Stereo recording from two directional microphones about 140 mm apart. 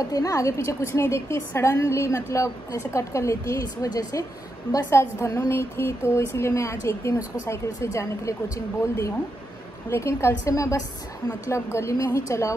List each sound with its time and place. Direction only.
0.0 s a woman's voice: 25° left (ahead or behind)
9.8 s a woman's voice: 20° left (ahead or behind)